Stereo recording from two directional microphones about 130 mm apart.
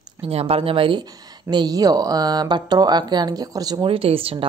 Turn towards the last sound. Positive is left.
turn(degrees=-45)  # may be behind; listen again after turning